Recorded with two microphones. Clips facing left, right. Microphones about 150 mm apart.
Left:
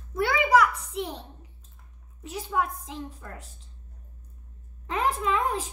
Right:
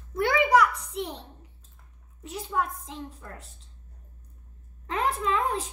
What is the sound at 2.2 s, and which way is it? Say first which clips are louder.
Speech: left 1 dB; 5° left (ahead or behind).